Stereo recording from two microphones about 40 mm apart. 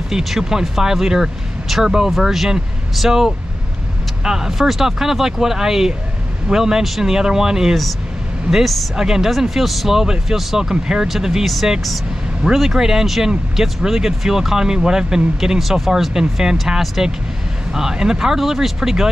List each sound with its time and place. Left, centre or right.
0.1 s speech: centre